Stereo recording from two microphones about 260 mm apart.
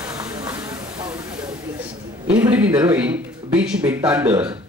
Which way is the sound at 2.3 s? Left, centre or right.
Centre.